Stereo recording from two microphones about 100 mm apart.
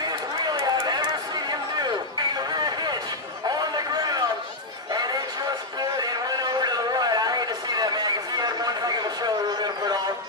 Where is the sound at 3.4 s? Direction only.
40° right (ahead or behind).